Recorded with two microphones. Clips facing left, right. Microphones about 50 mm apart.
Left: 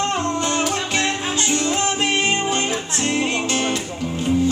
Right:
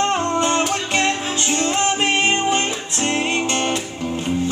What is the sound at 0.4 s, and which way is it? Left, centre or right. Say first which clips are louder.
Music: right 3 dB; right.